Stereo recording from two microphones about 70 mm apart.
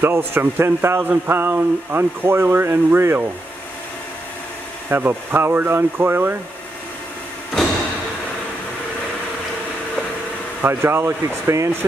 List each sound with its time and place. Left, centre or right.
0.0 s speech: right
4.8 s speech: right
10.6 s speech: right